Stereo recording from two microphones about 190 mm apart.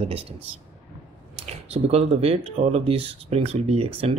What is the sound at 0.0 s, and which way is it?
Speech, 30° right (ahead or behind).